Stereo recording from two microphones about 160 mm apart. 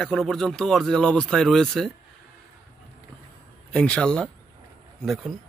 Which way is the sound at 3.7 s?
5° left (ahead or behind).